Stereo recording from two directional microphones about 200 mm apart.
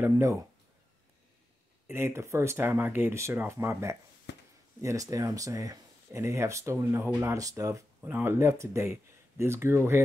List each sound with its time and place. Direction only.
0.0 s speech: 15° right (ahead or behind)
1.9 s speech: 10° right (ahead or behind)
4.3 s a sound: 60° left (ahead or behind)
4.8 s speech: 15° right (ahead or behind)